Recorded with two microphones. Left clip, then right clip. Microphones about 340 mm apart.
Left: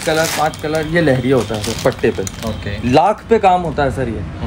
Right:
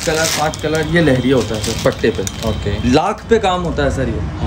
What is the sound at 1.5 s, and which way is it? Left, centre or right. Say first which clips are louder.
A man's voice: even; centre.